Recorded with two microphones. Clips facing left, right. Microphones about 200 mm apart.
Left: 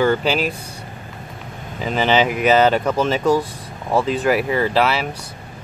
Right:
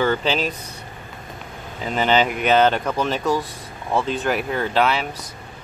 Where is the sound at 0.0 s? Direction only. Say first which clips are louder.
Left 3 dB; 10° left (ahead or behind).